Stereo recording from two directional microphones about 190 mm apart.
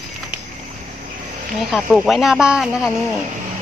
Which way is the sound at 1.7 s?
Centre (ahead or behind).